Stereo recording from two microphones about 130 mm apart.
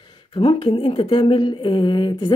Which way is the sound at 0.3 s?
40° left (ahead or behind).